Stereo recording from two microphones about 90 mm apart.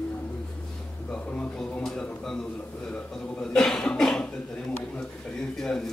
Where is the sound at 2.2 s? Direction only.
5° left (ahead or behind).